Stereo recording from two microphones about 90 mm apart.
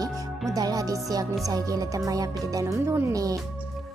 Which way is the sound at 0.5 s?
40° right (ahead or behind).